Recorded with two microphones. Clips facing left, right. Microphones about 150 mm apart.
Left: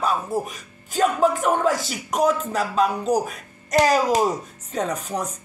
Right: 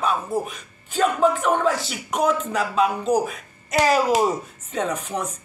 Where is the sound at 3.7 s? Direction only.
5° right (ahead or behind).